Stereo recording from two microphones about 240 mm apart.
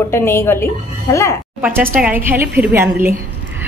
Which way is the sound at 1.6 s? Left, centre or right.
Centre.